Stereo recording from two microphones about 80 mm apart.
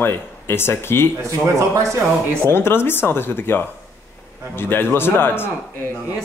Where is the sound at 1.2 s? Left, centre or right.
Right.